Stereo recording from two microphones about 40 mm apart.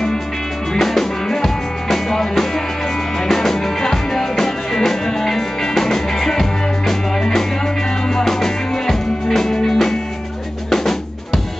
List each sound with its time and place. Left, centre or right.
0.7 s music: centre
10.7 s drum: centre